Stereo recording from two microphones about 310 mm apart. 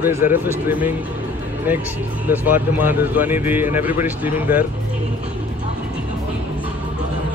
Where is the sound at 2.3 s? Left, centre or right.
Centre.